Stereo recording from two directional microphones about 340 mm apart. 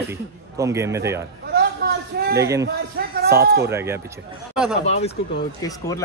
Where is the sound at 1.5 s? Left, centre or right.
Right.